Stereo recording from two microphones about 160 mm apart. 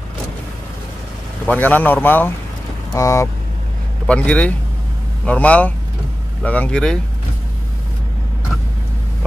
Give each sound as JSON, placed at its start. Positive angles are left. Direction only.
{"t": 1.4, "sound": "a man's voice", "side_deg": 10}
{"t": 4.1, "sound": "a man's voice", "side_deg": 5}